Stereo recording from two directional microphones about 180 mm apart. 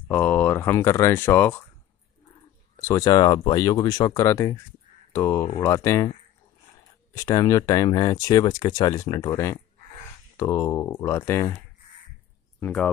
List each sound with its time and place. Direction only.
0.1 s speech: 5° left (ahead or behind)
2.8 s speech: 15° left (ahead or behind)
7.2 s speech: 20° left (ahead or behind)
12.5 s speech: 10° left (ahead or behind)